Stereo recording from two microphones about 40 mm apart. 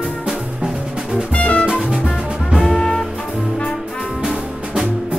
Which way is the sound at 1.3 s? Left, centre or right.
Left.